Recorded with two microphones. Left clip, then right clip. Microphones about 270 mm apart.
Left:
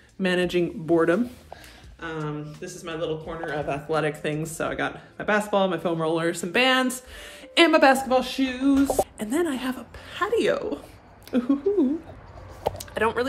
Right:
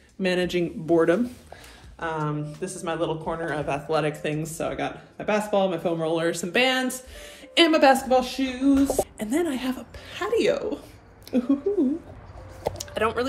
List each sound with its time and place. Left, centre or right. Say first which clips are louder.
0.2 s speech: left 1 dB; centre
2.0 s speech: right 4 dB; centre
3.5 s a man's voice: right 1 dB; right
3.9 s speech: even; centre
12.7 s a sound: even; centre